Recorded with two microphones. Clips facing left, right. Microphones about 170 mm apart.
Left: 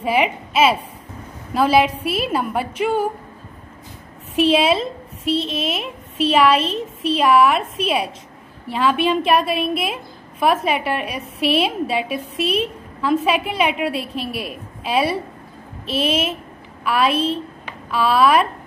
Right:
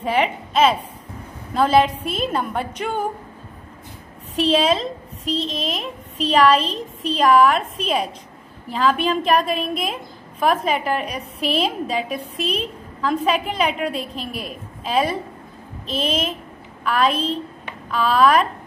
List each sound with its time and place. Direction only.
0.0 s a woman's voice: 10° left (ahead or behind)
4.4 s a woman's voice: 10° left (ahead or behind)